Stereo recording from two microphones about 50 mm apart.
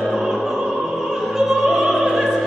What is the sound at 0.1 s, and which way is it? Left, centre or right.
Opera, centre.